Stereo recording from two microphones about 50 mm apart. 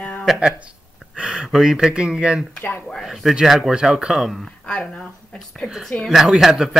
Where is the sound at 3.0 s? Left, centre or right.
Centre.